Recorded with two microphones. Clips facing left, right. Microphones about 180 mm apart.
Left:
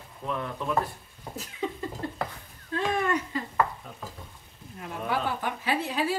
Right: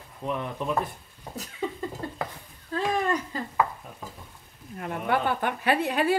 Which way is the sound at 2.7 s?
35° right (ahead or behind).